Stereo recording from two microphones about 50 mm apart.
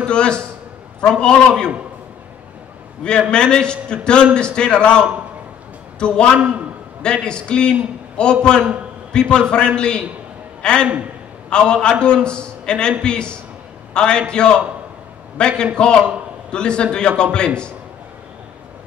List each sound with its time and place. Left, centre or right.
0.0 s a man's voice: centre
3.0 s a man's voice: centre